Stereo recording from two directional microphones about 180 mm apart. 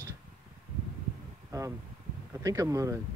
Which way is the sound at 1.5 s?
15° right (ahead or behind).